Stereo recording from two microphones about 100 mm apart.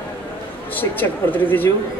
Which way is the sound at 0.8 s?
15° left (ahead or behind).